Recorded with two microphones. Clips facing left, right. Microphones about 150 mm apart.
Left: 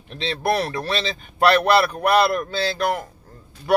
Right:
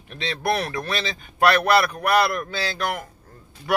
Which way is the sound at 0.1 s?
30° left (ahead or behind).